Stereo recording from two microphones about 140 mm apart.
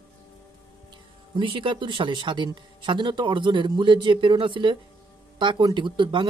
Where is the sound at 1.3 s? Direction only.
40° right (ahead or behind).